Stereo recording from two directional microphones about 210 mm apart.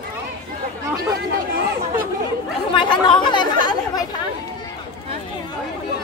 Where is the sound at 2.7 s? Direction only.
25° left (ahead or behind).